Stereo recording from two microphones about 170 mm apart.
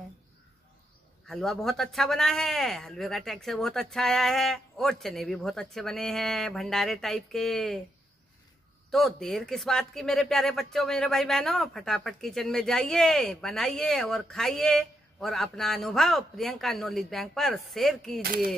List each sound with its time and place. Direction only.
1.2 s speech: centre (ahead or behind)
8.9 s speech: centre (ahead or behind)
18.2 s speech: 60° right (ahead or behind)